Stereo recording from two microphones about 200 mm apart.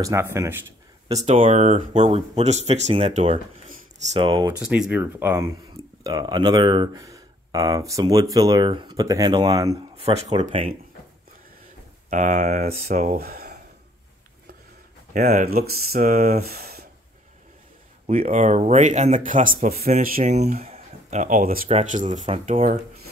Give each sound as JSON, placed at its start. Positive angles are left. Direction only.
{"t": 0.0, "sound": "speech", "side_deg": -15}
{"t": 1.2, "sound": "speech", "side_deg": -30}
{"t": 4.5, "sound": "speech", "side_deg": -5}
{"t": 10.0, "sound": "speech", "side_deg": -30}
{"t": 12.1, "sound": "speech", "side_deg": -40}
{"t": 12.8, "sound": "speech", "side_deg": -45}
{"t": 15.1, "sound": "speech", "side_deg": -40}
{"t": 18.0, "sound": "speech", "side_deg": -35}